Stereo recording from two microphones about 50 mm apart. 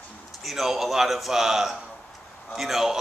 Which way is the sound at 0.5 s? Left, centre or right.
Centre.